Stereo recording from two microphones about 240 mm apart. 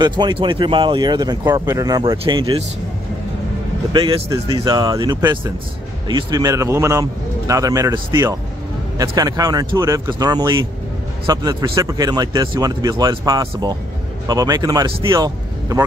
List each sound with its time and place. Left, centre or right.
0.0 s speech: centre
3.9 s speech: centre